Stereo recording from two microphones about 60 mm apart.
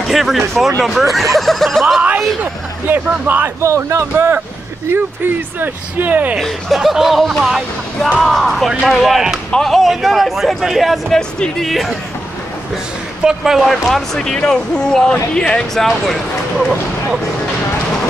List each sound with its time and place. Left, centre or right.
0.1 s speech: centre
1.3 s chuckle: centre
2.9 s speech: right
3.6 s speech: right
4.9 s speech: right
6.3 s speech: centre
11.6 s speech: centre
13.2 s speech: centre